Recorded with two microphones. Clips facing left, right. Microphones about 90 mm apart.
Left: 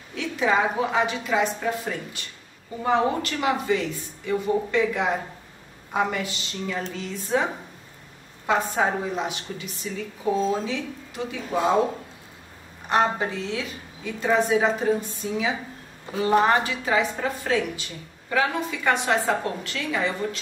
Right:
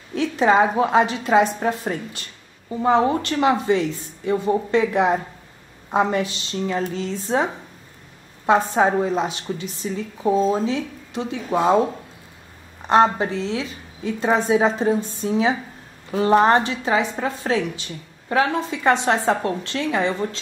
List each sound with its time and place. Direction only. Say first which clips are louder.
0.1 s a sound: right 6 dB; 35° right (ahead or behind)
0.7 s a woman's voice: right 6 dB; 40° right (ahead or behind)
8.5 s a woman's voice: right 6 dB; 30° right (ahead or behind)
12.8 s a woman's voice: right 6 dB; 30° right (ahead or behind)